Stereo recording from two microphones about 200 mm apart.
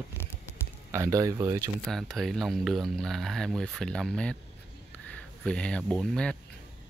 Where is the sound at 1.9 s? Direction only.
Centre (ahead or behind).